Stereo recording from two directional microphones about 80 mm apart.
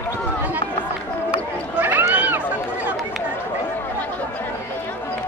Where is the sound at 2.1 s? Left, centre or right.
Right.